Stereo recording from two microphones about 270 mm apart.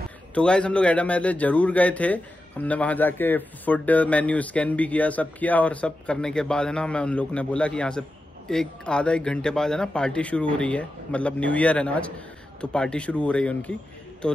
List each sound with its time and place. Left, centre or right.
0.3 s a man's voice: centre